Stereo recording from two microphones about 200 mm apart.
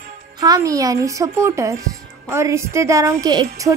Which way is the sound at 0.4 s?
20° right (ahead or behind).